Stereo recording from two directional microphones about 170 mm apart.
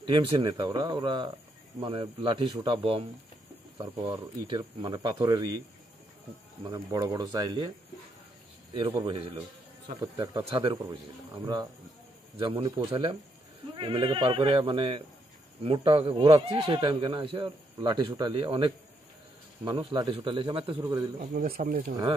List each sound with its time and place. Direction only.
0.0 s speech: 25° right (ahead or behind)
6.6 s speech: 20° right (ahead or behind)
8.7 s speech: 30° right (ahead or behind)
12.4 s speech: 30° right (ahead or behind)
21.2 s speech: 55° right (ahead or behind)